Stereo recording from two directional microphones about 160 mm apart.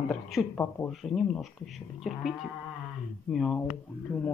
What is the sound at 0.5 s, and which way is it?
Speech, 15° left (ahead or behind).